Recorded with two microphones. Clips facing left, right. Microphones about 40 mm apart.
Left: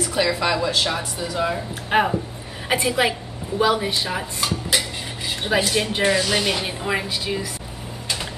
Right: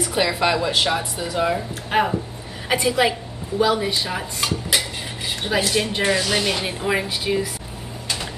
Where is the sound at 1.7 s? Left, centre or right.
Centre.